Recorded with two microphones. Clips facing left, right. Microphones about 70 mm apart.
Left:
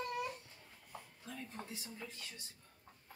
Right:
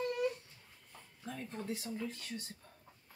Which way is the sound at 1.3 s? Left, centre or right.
Right.